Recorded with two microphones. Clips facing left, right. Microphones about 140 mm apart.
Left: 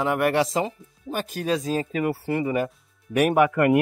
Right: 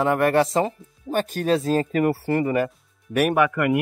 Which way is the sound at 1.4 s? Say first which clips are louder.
Right 3 dB; 35° right (ahead or behind).